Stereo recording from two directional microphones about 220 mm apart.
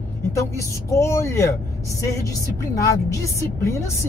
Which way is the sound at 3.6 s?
10° left (ahead or behind).